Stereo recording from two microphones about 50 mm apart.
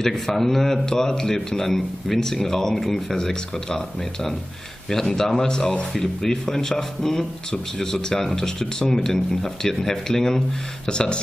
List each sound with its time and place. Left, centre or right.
0.0 s a man's voice: centre